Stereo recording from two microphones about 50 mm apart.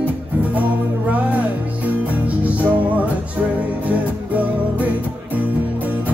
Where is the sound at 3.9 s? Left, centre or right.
Right.